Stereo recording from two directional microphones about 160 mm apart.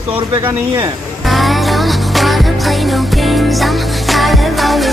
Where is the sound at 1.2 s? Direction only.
Centre (ahead or behind).